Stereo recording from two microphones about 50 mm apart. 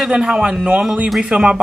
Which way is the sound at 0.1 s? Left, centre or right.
Centre.